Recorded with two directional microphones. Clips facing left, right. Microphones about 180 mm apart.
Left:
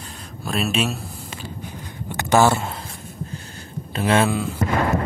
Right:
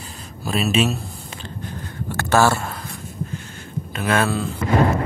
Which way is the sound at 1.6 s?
15° left (ahead or behind).